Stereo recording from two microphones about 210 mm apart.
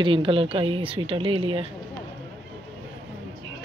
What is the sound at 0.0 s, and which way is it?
Speech, 25° right (ahead or behind).